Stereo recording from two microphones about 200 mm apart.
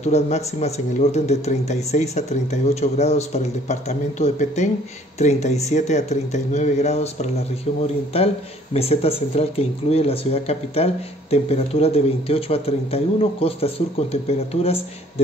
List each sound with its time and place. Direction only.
0.0 s speech: 35° left (ahead or behind)